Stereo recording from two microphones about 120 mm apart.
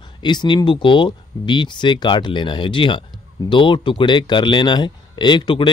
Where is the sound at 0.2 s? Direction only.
40° left (ahead or behind).